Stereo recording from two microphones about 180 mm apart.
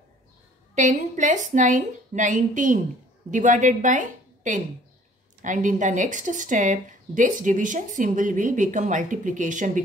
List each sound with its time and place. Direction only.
0.7 s a woman's voice: 45° right (ahead or behind)